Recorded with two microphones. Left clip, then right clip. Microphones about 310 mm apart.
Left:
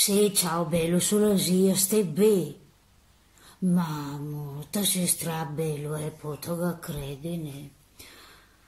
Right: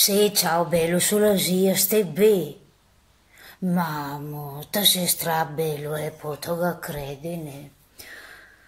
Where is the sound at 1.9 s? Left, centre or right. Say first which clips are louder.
Right 4 dB; right.